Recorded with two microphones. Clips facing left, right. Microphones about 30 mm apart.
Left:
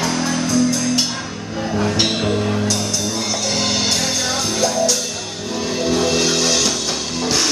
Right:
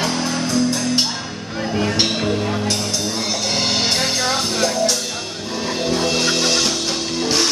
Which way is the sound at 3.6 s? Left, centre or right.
Right.